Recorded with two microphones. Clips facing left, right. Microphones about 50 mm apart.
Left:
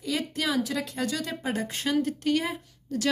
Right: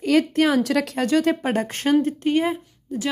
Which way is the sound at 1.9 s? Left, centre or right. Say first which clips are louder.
Right 6 dB; right.